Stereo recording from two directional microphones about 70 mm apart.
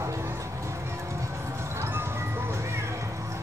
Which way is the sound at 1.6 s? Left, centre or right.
Right.